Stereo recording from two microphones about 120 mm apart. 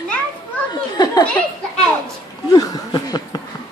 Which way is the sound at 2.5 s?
30° left (ahead or behind).